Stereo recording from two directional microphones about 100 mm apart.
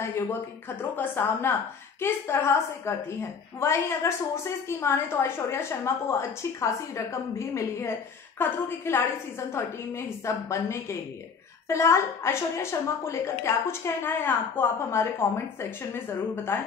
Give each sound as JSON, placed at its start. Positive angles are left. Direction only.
{"t": 0.0, "sound": "a woman's voice", "side_deg": 25}
{"t": 16.5, "sound": "a woman's voice", "side_deg": 25}